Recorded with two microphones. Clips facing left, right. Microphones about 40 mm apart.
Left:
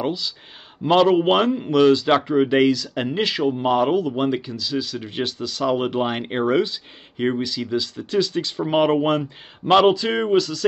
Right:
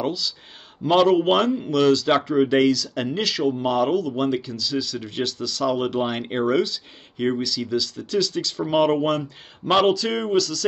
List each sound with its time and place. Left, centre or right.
0.0 s speech: centre